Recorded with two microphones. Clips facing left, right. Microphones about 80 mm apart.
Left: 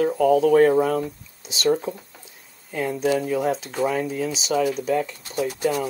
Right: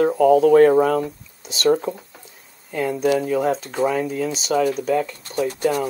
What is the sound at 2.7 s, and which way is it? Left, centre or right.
Speech, centre.